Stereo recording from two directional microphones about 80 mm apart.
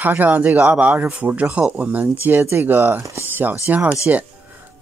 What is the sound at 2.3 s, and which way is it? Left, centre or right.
Speech, right.